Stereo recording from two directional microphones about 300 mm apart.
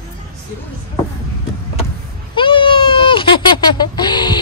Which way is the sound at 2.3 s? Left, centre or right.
Centre.